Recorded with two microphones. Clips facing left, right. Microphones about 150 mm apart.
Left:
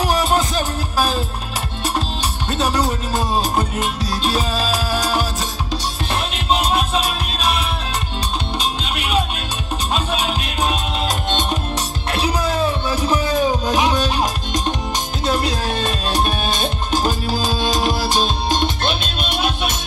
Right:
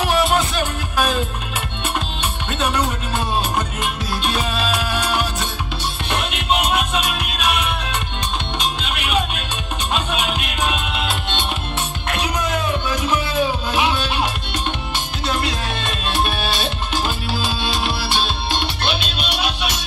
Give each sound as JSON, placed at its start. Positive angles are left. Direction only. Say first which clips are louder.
{"t": 0.0, "sound": "music", "louder": "even", "side_deg": 35}
{"t": 2.5, "sound": "music", "louder": "left 2 dB", "side_deg": 35}